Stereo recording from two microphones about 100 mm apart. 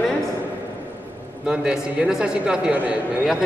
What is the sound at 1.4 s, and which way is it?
A man's voice, 5° right (ahead or behind).